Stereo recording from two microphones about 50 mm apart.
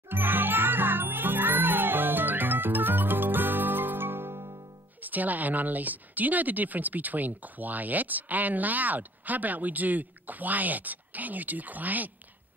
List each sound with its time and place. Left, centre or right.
0.1 s music: right
5.0 s speech: right